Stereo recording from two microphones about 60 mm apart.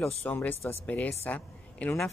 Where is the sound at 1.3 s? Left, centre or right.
Left.